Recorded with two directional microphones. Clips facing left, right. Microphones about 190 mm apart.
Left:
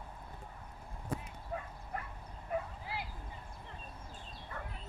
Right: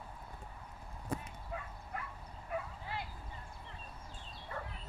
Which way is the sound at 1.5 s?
40° left (ahead or behind).